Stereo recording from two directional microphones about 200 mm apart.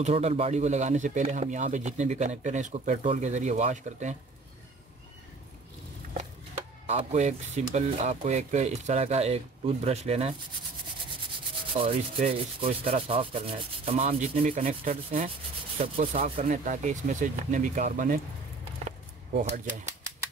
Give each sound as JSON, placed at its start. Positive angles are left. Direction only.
{"t": 0.0, "sound": "speech", "side_deg": -30}
{"t": 6.9, "sound": "speech", "side_deg": -35}
{"t": 11.8, "sound": "speech", "side_deg": -30}
{"t": 19.3, "sound": "speech", "side_deg": -50}